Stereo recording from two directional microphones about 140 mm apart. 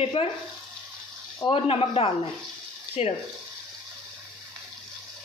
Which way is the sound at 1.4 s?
40° left (ahead or behind).